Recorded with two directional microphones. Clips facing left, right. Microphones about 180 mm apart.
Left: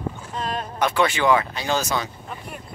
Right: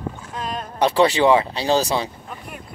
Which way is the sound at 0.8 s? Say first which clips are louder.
Right 5 dB; 35° right (ahead or behind).